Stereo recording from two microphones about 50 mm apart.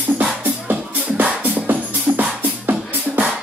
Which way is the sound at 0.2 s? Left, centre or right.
Right.